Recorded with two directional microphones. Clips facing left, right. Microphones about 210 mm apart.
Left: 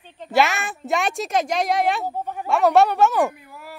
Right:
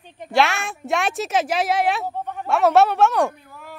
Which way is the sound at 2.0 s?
10° left (ahead or behind).